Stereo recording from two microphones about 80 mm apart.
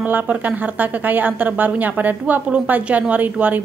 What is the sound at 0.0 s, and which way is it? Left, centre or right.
A woman's voice, right.